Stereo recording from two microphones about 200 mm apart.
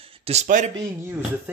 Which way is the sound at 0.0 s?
30° right (ahead or behind).